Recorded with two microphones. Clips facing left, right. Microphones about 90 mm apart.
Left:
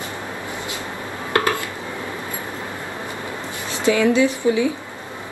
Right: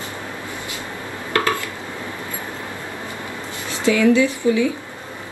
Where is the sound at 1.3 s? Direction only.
25° left (ahead or behind).